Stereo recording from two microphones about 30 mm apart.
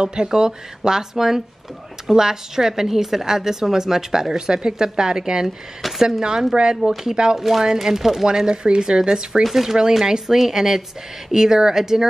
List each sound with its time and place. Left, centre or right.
0.0 s a woman's voice: right
5.8 s speech: centre
6.5 s speech: right
6.8 s speech: centre
7.1 s a woman's voice: centre
8.5 s speech: right
9.4 s a woman's voice: centre